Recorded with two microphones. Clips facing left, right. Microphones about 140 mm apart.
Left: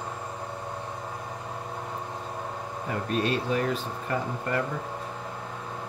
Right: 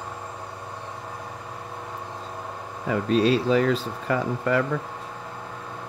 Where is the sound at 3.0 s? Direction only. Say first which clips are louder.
Right 7 dB; 90° right.